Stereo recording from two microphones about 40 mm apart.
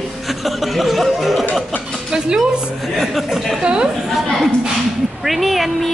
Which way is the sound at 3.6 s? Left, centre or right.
Right.